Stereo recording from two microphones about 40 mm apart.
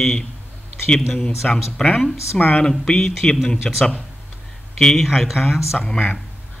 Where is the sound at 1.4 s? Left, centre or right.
Centre.